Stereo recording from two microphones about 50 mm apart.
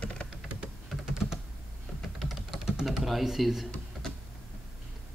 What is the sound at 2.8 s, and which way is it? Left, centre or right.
Speech, centre.